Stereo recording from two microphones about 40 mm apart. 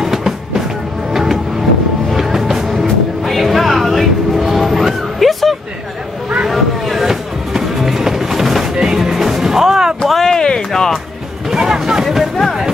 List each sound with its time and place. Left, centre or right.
0.0 s music: centre
1.1 s vehicle: centre
2.0 s music: centre
8.7 s music: centre
10.0 s a sound: centre
10.3 s a sound: left
10.7 s music: centre
11.5 s a sound: centre
12.0 s music: centre